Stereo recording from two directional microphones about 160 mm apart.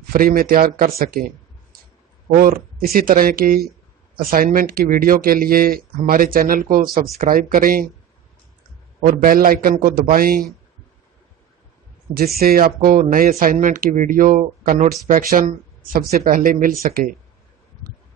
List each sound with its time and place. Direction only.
0.1 s speech: 65° right (ahead or behind)
9.0 s speech: 60° right (ahead or behind)
12.4 s speech: 70° right (ahead or behind)